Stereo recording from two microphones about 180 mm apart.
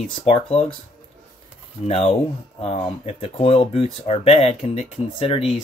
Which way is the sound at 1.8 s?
35° left (ahead or behind).